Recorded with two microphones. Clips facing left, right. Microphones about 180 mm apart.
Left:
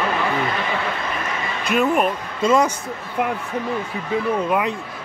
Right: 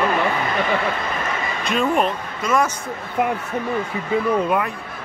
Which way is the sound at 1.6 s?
5° left (ahead or behind).